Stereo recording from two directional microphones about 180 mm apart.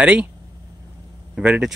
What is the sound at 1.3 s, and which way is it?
Speech, 5° right (ahead or behind).